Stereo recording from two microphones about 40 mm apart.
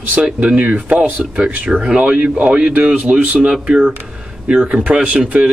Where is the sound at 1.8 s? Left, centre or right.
Right.